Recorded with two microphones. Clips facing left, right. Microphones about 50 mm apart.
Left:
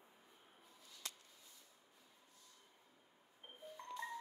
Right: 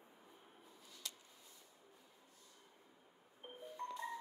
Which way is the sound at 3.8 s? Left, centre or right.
Right.